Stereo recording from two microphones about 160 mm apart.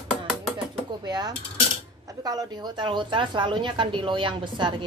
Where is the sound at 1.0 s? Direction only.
25° right (ahead or behind).